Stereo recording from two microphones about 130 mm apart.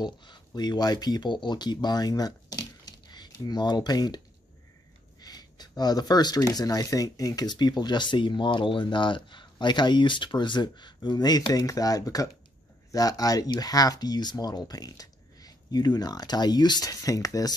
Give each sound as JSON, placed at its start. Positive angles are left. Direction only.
{"t": 0.0, "sound": "speech", "side_deg": 35}
{"t": 5.2, "sound": "speech", "side_deg": 30}